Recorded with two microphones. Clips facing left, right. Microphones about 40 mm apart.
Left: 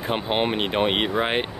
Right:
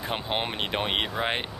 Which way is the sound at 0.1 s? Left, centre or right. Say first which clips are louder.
Left 7 dB; centre.